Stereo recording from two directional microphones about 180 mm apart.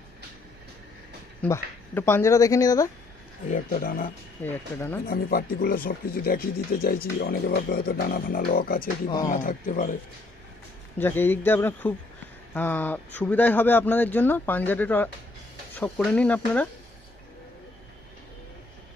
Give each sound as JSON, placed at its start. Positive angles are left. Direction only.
{"t": 1.4, "sound": "speech", "side_deg": 10}
{"t": 3.4, "sound": "speech", "side_deg": 45}
{"t": 4.5, "sound": "speech", "side_deg": 15}
{"t": 5.0, "sound": "speech", "side_deg": 55}
{"t": 11.0, "sound": "speech", "side_deg": 10}